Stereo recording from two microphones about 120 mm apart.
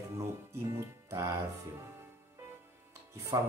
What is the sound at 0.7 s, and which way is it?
Music, 25° right (ahead or behind).